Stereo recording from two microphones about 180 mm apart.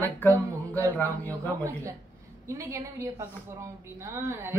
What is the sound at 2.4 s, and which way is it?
A woman's voice, 15° right (ahead or behind).